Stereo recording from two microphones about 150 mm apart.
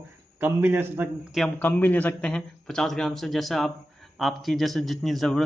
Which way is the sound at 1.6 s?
10° left (ahead or behind).